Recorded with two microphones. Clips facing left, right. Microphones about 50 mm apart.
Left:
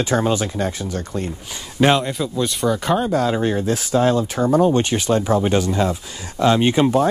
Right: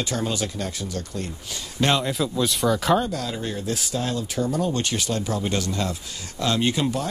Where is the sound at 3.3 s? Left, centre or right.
Left.